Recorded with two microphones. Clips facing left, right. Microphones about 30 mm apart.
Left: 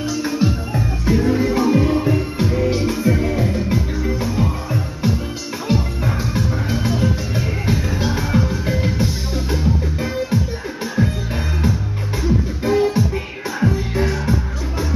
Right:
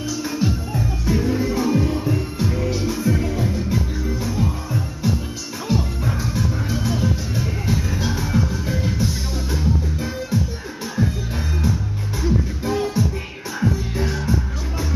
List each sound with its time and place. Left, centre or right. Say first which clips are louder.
0.4 s music: left 3 dB; centre
12.2 s music: left 2 dB; centre